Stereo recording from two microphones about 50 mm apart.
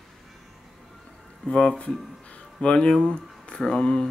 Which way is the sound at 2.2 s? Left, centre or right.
Left.